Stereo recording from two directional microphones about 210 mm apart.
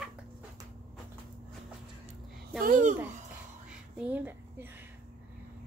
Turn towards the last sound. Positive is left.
turn(degrees=-10)  # may be behind; listen again after turning